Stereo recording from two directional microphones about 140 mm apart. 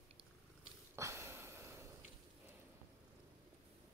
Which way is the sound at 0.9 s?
20° right (ahead or behind).